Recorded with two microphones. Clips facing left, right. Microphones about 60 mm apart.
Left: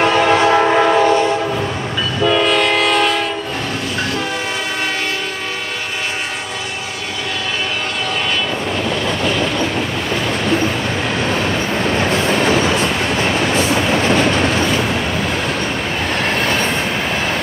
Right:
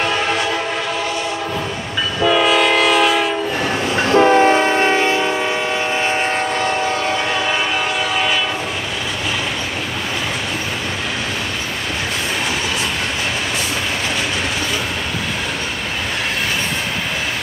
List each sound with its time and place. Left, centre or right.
0.2 s train: left
0.6 s train: left
2.2 s train: centre
4.1 s train: right